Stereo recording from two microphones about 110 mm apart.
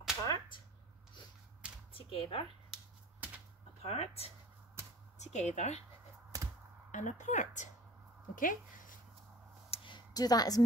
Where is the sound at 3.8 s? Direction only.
65° left (ahead or behind).